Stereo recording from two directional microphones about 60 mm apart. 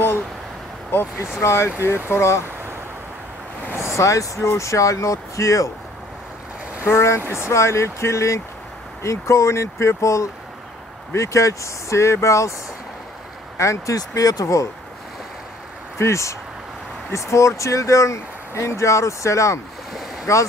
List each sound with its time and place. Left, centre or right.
1.4 s speech: left
3.7 s speech: left
6.8 s speech: left
13.6 s speech: left
16.0 s speech: left